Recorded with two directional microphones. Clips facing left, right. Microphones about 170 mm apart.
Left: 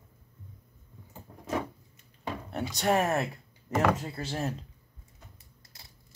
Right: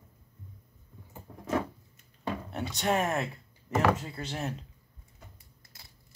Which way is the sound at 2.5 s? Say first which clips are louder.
Left 3 dB; 35° left (ahead or behind).